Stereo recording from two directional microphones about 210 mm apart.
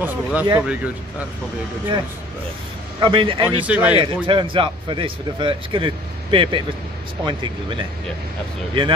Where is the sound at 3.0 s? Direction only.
25° right (ahead or behind).